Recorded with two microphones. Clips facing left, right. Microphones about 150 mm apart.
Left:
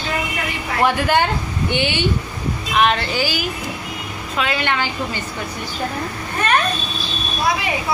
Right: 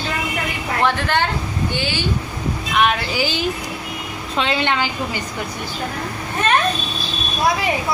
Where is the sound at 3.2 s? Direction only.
25° right (ahead or behind).